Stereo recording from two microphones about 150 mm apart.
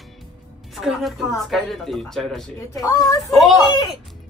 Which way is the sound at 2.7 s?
25° left (ahead or behind).